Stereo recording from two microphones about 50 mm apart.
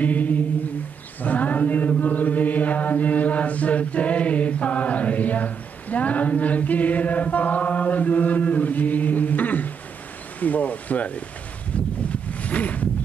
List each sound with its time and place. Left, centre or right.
0.0 s humming: left
1.2 s chant: left
10.4 s speech: left
12.1 s wind noise: left